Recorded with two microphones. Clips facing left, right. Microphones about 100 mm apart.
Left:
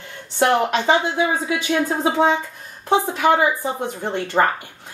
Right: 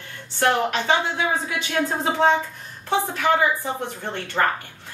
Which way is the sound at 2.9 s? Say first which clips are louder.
Left 4 dB; 15° left (ahead or behind).